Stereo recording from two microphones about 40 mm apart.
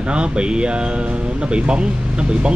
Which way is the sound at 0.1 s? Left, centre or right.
Right.